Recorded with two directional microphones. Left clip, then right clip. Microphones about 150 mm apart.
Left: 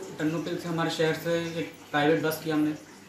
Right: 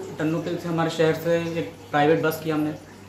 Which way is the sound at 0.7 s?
Centre (ahead or behind).